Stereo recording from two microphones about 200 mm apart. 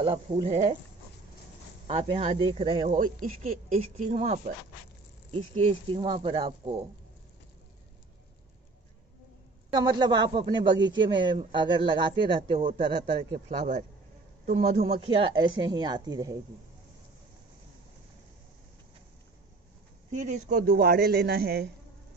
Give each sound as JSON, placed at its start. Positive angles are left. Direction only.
{"t": 0.0, "sound": "speech", "side_deg": -25}
{"t": 1.9, "sound": "speech", "side_deg": -30}
{"t": 2.9, "sound": "speech", "side_deg": -40}
{"t": 9.7, "sound": "speech", "side_deg": -20}
{"t": 12.5, "sound": "speech", "side_deg": -40}
{"t": 14.4, "sound": "a man's voice", "side_deg": -30}
{"t": 20.1, "sound": "a man's voice", "side_deg": -35}